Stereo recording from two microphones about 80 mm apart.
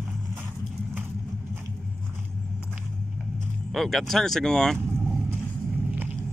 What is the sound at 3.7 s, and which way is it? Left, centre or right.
Speech, centre.